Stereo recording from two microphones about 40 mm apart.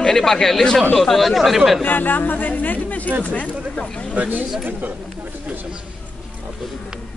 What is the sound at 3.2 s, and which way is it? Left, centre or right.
Speech, left.